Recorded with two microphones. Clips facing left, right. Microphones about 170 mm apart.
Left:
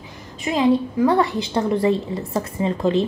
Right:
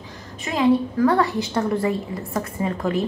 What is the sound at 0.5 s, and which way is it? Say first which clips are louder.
A woman's voice: left 1 dB; 20° left (ahead or behind).